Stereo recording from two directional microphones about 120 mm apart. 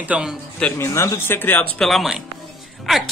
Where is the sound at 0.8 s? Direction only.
25° left (ahead or behind).